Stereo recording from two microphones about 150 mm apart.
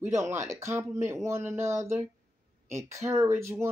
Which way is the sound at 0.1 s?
20° right (ahead or behind).